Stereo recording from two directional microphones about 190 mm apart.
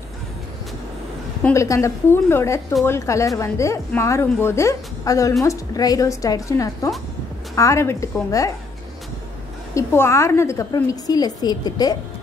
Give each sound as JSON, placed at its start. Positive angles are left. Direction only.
{"t": 1.4, "sound": "a woman's voice", "side_deg": 15}
{"t": 9.8, "sound": "a woman's voice", "side_deg": 15}